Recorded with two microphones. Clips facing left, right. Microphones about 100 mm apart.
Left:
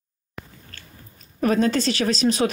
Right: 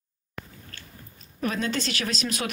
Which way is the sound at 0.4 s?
Centre (ahead or behind).